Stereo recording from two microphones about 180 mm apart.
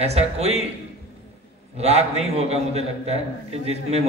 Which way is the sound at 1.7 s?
35° right (ahead or behind).